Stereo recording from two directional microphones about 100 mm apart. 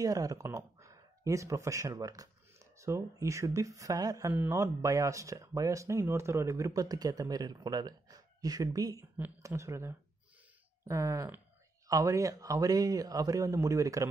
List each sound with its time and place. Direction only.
0.0 s speech: 35° right (ahead or behind)
9.6 s speech: 25° right (ahead or behind)